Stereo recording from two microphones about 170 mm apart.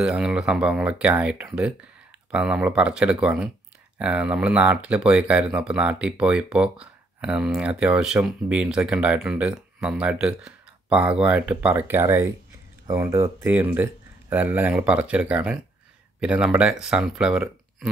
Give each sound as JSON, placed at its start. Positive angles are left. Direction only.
{"t": 0.0, "sound": "speech", "side_deg": -5}